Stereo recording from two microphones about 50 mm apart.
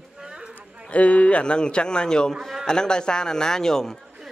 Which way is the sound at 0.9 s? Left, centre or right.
Left.